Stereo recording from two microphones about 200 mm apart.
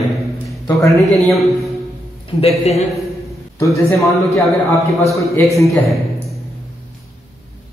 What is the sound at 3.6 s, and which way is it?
Speech, 15° left (ahead or behind).